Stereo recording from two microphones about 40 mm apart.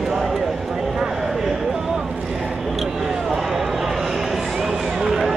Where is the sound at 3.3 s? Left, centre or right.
Centre.